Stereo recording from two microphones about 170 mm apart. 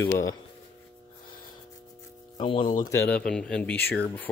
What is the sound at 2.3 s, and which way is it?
Speech, 30° left (ahead or behind).